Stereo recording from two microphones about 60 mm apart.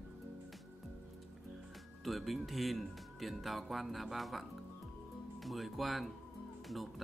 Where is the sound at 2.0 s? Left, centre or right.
Centre.